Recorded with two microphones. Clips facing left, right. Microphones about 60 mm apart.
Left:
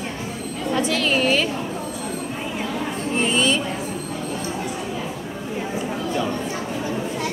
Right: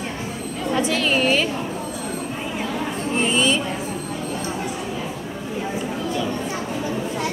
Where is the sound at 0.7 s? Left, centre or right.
Centre.